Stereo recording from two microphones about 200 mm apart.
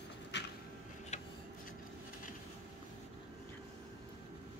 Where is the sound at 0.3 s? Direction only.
60° left (ahead or behind).